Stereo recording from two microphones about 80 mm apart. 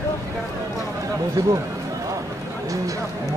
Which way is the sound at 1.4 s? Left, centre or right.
Right.